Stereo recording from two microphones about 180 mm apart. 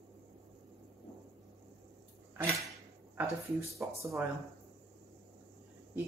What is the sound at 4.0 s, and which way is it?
Speech, 15° right (ahead or behind).